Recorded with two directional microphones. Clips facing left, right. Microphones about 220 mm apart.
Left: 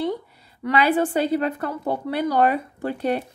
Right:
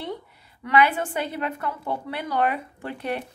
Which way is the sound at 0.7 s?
35° left (ahead or behind).